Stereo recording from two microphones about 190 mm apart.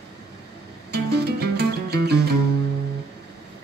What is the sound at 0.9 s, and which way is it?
Music, 60° right (ahead or behind).